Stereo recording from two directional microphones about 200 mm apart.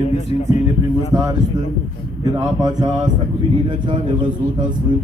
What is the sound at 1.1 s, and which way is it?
Mantra, 15° right (ahead or behind).